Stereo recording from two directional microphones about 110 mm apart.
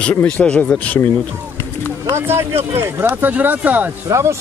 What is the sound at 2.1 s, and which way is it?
Speech, 25° right (ahead or behind).